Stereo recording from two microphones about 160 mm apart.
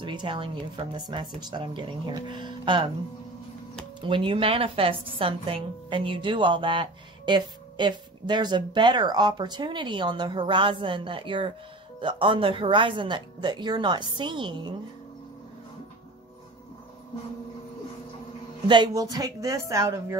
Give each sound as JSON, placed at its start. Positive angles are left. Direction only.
{"t": 0.0, "sound": "a woman's voice", "side_deg": -30}
{"t": 4.0, "sound": "a woman's voice", "side_deg": -30}
{"t": 18.7, "sound": "speech", "side_deg": -25}